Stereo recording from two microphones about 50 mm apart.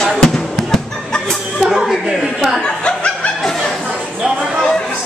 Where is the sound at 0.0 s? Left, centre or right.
Centre.